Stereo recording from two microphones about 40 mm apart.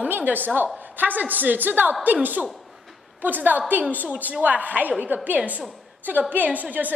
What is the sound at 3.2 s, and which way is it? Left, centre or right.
A woman's voice, right.